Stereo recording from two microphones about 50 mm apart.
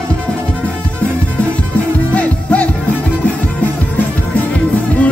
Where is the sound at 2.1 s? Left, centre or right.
Left.